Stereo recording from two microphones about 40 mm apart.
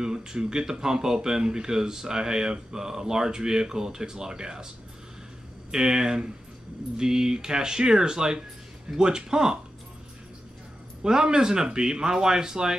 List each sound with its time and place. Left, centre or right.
0.0 s speech: centre
5.7 s speech: centre
11.0 s speech: centre